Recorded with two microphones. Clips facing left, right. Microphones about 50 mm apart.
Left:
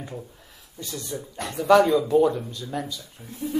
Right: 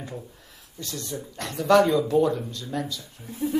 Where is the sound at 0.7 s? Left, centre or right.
Centre.